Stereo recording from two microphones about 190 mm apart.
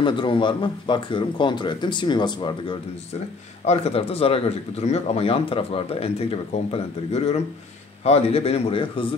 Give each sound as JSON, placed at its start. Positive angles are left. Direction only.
{"t": 0.0, "sound": "speech", "side_deg": 25}
{"t": 3.6, "sound": "speech", "side_deg": 35}